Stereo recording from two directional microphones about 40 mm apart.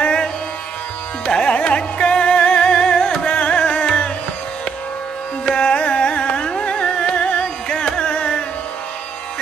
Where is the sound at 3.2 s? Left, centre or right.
Left.